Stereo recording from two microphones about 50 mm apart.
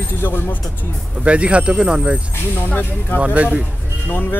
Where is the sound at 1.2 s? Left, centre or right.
Right.